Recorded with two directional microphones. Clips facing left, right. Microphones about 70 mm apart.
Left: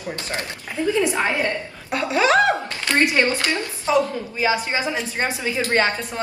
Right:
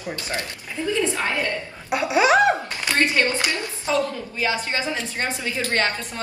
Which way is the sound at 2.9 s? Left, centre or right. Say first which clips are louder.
Left 2 dB; left.